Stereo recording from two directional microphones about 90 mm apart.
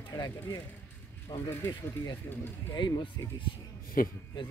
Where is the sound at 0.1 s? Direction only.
40° left (ahead or behind).